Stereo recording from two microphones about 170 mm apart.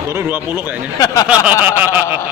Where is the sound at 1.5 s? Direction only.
10° right (ahead or behind).